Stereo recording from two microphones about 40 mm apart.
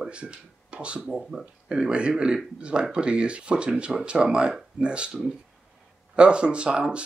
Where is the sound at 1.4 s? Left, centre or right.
Right.